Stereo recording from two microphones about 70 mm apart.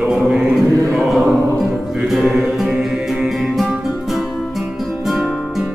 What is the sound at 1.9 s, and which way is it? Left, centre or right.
Music, centre.